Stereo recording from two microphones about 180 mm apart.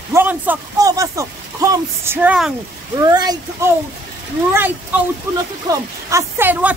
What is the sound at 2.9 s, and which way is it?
Speech, 20° right (ahead or behind).